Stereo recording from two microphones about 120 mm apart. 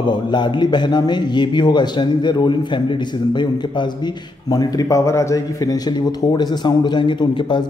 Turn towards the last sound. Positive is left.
turn(degrees=40)  # may be behind; listen again after turning